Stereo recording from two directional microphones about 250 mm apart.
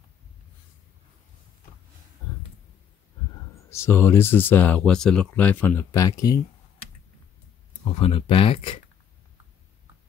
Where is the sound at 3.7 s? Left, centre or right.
Centre.